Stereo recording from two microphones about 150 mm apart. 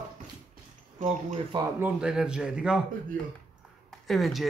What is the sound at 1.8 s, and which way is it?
A man's voice, 5° right (ahead or behind).